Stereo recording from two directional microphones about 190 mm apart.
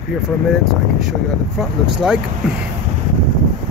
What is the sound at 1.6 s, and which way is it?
Speech, 5° right (ahead or behind).